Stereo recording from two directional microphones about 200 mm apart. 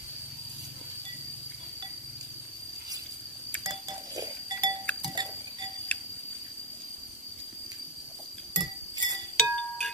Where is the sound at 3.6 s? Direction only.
20° right (ahead or behind).